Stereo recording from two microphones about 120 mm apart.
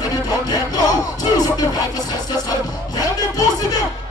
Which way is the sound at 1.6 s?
30° left (ahead or behind).